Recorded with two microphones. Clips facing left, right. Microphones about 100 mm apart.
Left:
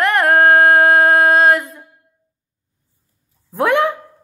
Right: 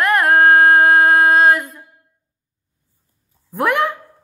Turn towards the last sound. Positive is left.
turn(degrees=20)  # may be behind; listen again after turning